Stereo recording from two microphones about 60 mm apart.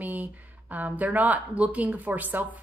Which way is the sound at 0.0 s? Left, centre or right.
Right.